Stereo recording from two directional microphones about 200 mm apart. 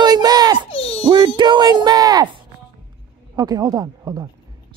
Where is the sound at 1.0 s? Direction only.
20° right (ahead or behind).